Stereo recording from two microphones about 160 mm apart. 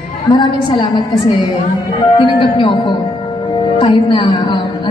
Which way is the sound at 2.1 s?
30° left (ahead or behind).